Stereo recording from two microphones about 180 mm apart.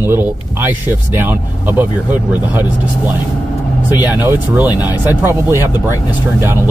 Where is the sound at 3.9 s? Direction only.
10° right (ahead or behind).